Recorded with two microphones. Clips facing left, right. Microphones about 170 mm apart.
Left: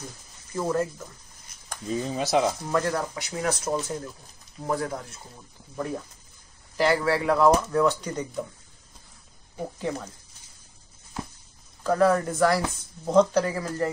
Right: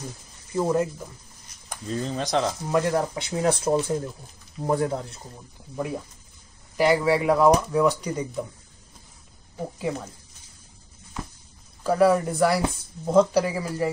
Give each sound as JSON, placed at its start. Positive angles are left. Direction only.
{"t": 0.6, "sound": "speech", "side_deg": -15}
{"t": 1.9, "sound": "speech", "side_deg": 5}
{"t": 2.7, "sound": "speech", "side_deg": -20}
{"t": 6.8, "sound": "speech", "side_deg": -15}
{"t": 9.8, "sound": "speech", "side_deg": -5}
{"t": 11.8, "sound": "speech", "side_deg": -10}